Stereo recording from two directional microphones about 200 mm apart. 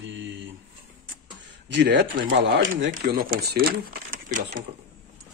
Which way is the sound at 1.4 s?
65° right (ahead or behind).